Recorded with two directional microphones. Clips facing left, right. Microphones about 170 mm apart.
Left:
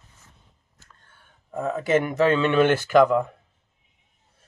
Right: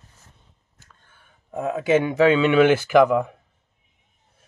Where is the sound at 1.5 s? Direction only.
10° right (ahead or behind).